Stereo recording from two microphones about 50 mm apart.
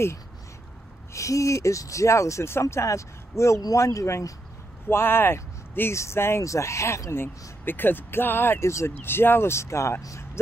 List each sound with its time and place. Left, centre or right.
1.1 s speech: left
4.8 s speech: left
6.4 s speech: left
7.6 s speech: left
8.5 s speech: left
9.0 s speech: left